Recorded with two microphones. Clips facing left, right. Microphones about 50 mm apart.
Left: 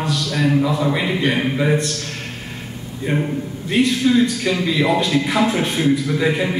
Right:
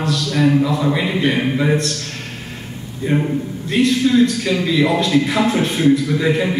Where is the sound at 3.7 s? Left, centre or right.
Centre.